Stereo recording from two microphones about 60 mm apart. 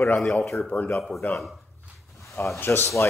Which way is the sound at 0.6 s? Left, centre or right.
Left.